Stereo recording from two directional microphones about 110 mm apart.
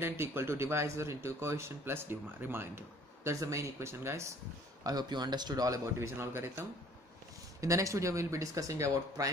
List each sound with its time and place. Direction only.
0.0 s speech: 20° right (ahead or behind)
4.8 s a man's voice: 40° right (ahead or behind)
5.9 s speech: 20° right (ahead or behind)
7.6 s speech: 30° right (ahead or behind)